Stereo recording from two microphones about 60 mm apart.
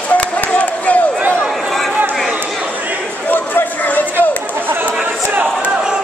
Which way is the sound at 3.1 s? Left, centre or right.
Left.